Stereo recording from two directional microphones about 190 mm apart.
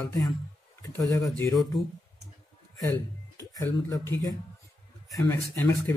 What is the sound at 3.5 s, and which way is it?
Speech, 20° left (ahead or behind).